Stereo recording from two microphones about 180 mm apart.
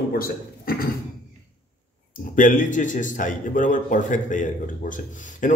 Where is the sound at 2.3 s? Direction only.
45° left (ahead or behind).